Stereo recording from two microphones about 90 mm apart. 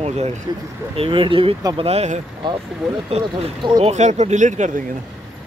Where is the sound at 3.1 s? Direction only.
90° right.